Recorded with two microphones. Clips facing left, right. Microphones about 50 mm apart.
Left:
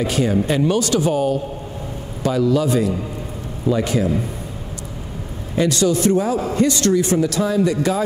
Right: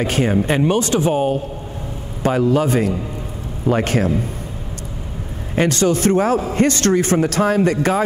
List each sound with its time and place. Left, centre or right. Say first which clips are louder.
0.0 s a man's voice: right 1 dB; right
5.6 s a man's voice: right 1 dB; right